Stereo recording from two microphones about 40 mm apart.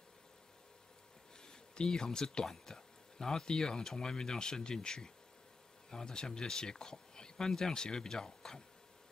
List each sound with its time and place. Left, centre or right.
1.4 s speech: centre